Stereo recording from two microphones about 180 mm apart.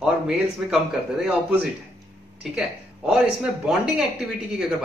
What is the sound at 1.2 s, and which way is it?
Speech, 5° right (ahead or behind).